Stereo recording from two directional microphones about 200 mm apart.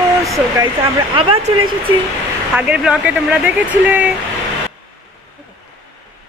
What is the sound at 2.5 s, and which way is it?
Speech, 5° right (ahead or behind).